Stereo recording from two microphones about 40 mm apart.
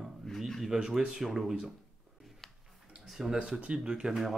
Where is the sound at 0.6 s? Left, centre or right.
Centre.